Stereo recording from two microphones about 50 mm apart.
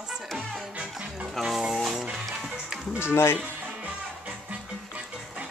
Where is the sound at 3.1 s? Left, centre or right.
Left.